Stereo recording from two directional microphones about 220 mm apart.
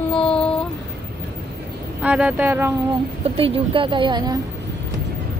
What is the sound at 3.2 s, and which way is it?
A woman's voice, 25° right (ahead or behind).